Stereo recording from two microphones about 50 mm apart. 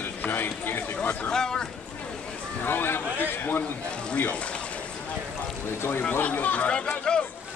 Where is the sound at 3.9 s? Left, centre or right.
Left.